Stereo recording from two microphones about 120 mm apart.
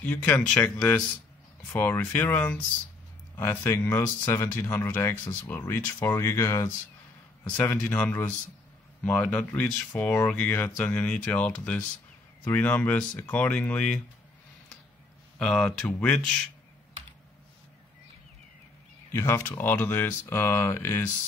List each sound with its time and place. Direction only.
0.0 s speech: 15° left (ahead or behind)
7.4 s speech: 10° left (ahead or behind)
15.3 s speech: 5° left (ahead or behind)
19.1 s speech: 25° left (ahead or behind)